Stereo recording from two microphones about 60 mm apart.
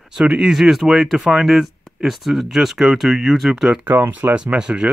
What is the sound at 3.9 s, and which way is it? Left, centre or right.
Speech, right.